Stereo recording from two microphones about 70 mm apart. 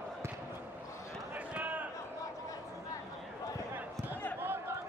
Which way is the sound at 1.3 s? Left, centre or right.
Right.